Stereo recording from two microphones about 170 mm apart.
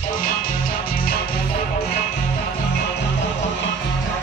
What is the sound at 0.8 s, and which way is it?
Music, 60° left (ahead or behind).